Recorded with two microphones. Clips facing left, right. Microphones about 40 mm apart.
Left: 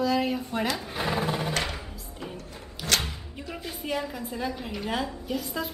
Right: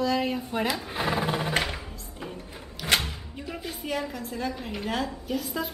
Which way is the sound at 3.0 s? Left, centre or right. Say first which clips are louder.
Even; centre.